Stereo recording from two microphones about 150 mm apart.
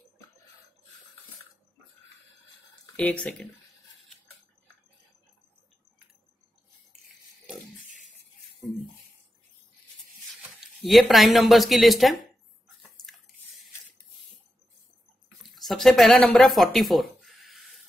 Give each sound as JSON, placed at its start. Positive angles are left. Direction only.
{"t": 3.0, "sound": "speech", "side_deg": 5}
{"t": 10.9, "sound": "speech", "side_deg": 0}
{"t": 15.4, "sound": "speech", "side_deg": 0}
{"t": 16.7, "sound": "a sound", "side_deg": 0}